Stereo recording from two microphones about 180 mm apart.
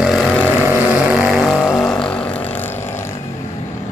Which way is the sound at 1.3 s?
Centre (ahead or behind).